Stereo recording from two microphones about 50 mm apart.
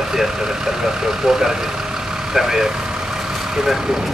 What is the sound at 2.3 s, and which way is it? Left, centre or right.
Speech, centre.